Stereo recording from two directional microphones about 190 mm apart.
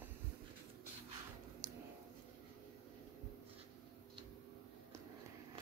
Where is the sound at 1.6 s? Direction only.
20° right (ahead or behind).